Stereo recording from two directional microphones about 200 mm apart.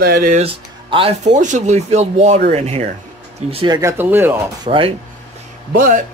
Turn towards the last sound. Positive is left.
turn(degrees=-40)  # may be behind; listen again after turning